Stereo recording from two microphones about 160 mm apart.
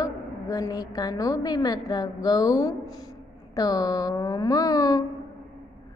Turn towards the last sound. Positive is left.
turn(degrees=20)  # may be behind; listen again after turning